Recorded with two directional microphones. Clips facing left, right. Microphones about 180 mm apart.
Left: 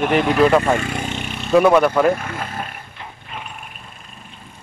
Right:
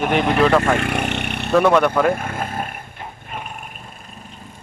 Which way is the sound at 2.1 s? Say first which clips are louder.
Right 2 dB; 50° right (ahead or behind).